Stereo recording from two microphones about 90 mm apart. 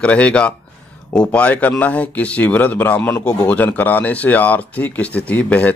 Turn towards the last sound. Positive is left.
turn(degrees=15)  # may be behind; listen again after turning